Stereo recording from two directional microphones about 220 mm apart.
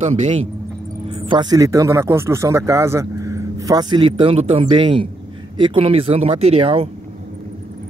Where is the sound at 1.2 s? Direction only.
20° right (ahead or behind).